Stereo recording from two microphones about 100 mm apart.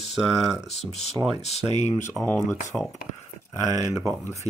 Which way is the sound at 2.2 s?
15° left (ahead or behind).